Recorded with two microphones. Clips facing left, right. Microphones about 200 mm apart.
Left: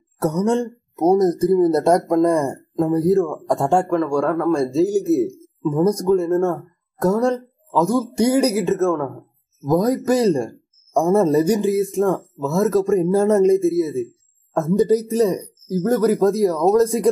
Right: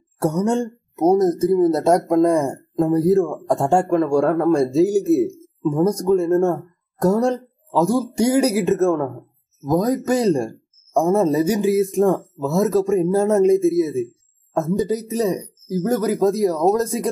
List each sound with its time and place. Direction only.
0.2 s speech: centre (ahead or behind)
3.9 s a man's voice: 20° right (ahead or behind)
4.6 s speech: centre (ahead or behind)
6.3 s speech: 15° right (ahead or behind)
7.0 s speech: centre (ahead or behind)
8.6 s speech: 15° right (ahead or behind)
9.7 s speech: centre (ahead or behind)
11.7 s speech: 15° right (ahead or behind)
12.6 s speech: centre (ahead or behind)
13.7 s speech: 15° right (ahead or behind)
14.6 s speech: centre (ahead or behind)